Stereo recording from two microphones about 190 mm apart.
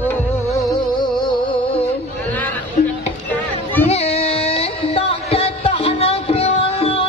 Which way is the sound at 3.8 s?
35° left (ahead or behind).